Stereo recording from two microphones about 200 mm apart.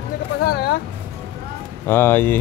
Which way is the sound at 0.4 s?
50° left (ahead or behind).